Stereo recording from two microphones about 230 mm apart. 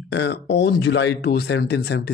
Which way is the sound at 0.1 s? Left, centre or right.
Left.